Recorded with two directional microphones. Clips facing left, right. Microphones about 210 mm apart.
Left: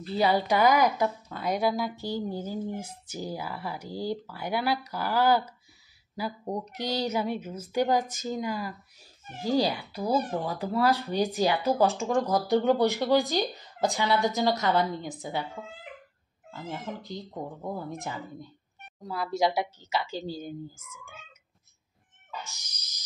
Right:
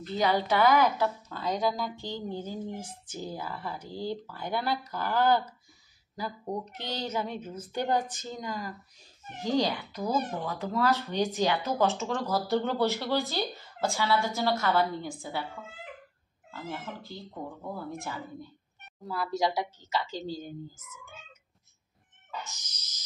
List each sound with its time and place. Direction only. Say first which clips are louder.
0.0 s a woman's voice: left 2 dB; 10° left (ahead or behind)
16.4 s a woman's voice: left 2 dB; 15° left (ahead or behind)
22.5 s a sound: right 1 dB; 10° left (ahead or behind)